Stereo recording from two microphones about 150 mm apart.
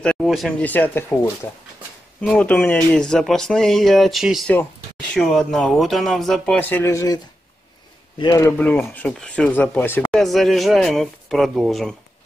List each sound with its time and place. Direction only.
0.0 s speech: 5° left (ahead or behind)
2.2 s speech: 10° left (ahead or behind)
8.2 s speech: 25° left (ahead or behind)
8.6 s speech: 10° left (ahead or behind)
10.1 s speech: centre (ahead or behind)